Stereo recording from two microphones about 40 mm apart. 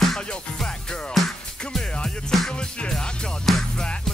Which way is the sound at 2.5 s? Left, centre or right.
Left.